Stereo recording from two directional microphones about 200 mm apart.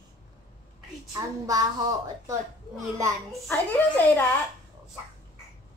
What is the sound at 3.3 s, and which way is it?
Speech, 5° left (ahead or behind).